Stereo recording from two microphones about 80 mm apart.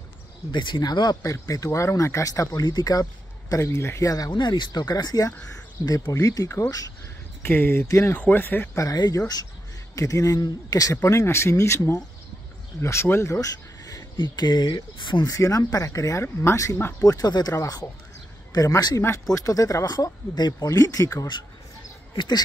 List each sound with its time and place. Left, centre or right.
0.5 s speech: left
1.2 s speech: left
3.6 s speech: left
4.3 s speech: left
7.4 s speech: left
8.7 s speech: left
11.1 s speech: left
14.1 s speech: left
15.2 s speech: left
18.9 s speech: left
19.3 s speech: left
22.1 s speech: left